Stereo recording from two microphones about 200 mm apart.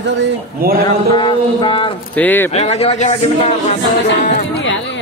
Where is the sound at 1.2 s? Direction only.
25° left (ahead or behind).